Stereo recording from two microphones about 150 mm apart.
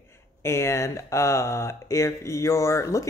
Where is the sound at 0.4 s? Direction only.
20° left (ahead or behind).